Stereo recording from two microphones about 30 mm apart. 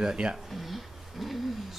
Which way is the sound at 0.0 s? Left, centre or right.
Right.